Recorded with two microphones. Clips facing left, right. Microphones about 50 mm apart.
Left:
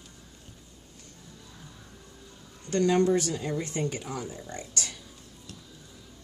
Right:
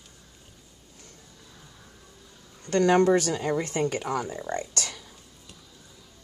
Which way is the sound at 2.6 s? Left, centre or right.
Right.